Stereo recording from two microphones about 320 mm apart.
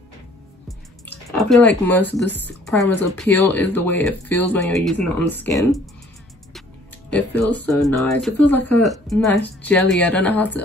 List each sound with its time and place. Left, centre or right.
1.3 s a woman's voice: centre
7.1 s speech: centre